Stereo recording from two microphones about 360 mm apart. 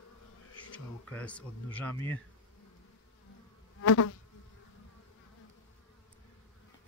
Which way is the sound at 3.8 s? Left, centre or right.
Left.